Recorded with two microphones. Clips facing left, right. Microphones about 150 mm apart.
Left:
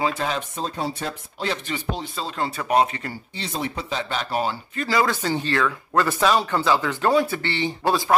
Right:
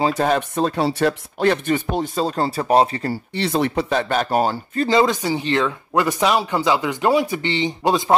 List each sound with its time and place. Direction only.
0.0 s speech: 45° right (ahead or behind)
0.4 s speech: 65° right (ahead or behind); by 3.2 s 35° right (ahead or behind)
3.3 s speech: 70° right (ahead or behind); by 4.8 s 45° right (ahead or behind)
4.8 s speech: 20° right (ahead or behind)